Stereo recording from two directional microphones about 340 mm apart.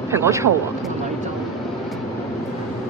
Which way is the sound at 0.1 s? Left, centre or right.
Centre.